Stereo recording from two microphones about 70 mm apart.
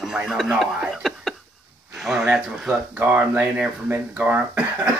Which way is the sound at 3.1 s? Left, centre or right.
Right.